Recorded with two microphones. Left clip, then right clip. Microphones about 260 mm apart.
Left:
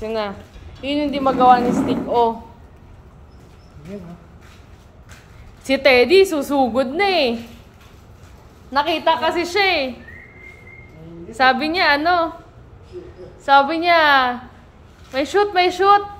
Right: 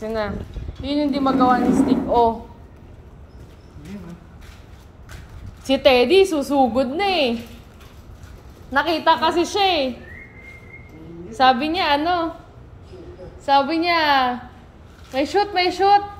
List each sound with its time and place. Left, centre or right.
0.0 s a woman's voice: centre
5.6 s a woman's voice: centre
8.7 s a woman's voice: left
9.4 s a woman's voice: centre
11.3 s a woman's voice: centre
13.5 s a woman's voice: centre